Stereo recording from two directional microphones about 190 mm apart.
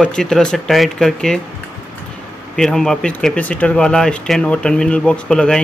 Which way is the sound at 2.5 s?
Centre (ahead or behind).